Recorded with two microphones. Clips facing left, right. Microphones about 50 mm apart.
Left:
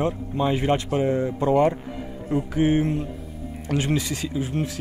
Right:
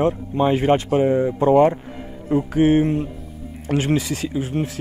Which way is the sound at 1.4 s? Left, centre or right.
Right.